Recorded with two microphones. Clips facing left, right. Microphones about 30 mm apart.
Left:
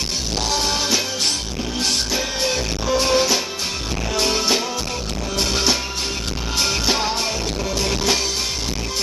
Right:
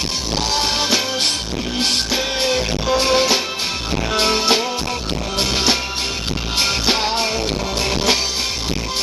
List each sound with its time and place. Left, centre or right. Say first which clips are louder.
0.5 s music: right 2 dB; right